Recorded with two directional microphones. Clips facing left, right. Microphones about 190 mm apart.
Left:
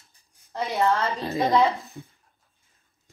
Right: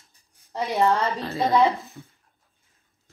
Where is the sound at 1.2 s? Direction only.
15° left (ahead or behind).